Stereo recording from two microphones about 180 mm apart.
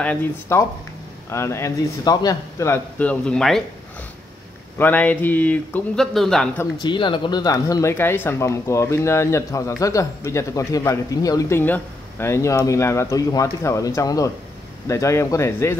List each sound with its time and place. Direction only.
0.0 s speech: 10° left (ahead or behind)
4.7 s speech: 10° left (ahead or behind)
6.8 s speech: 25° left (ahead or behind)